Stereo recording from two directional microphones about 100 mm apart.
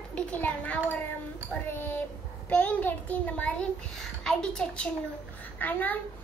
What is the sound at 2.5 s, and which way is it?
A child's voice, 15° left (ahead or behind).